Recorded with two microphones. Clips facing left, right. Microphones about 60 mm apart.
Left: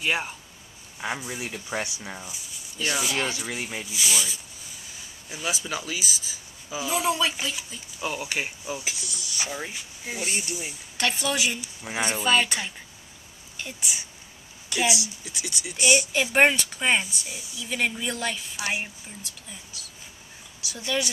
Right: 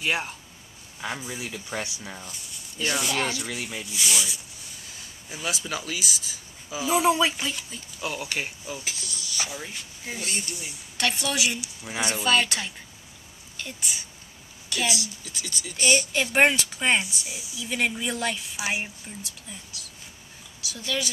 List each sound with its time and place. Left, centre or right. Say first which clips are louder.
0.0 s speech: even; centre
1.0 s speech: left 2 dB; centre
3.8 s speech: right 1 dB; centre
6.9 s speech: right 4 dB; centre
7.3 s speech: even; centre; by 9.5 s left
9.8 s a woman's voice: left 2 dB; centre
20.7 s speech: left 2 dB; centre